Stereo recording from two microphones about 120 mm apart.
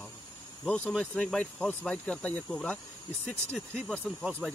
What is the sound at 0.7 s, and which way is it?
Speech, 10° left (ahead or behind).